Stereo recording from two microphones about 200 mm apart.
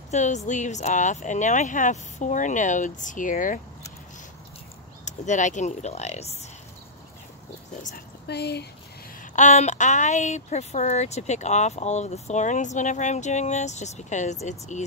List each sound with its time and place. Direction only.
0.1 s speech: 35° left (ahead or behind)
5.0 s speech: 35° left (ahead or behind)
7.8 s speech: 50° left (ahead or behind)
9.2 s speech: 40° left (ahead or behind)